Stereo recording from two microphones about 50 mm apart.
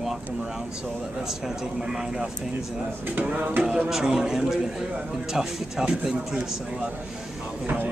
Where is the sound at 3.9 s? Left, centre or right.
Centre.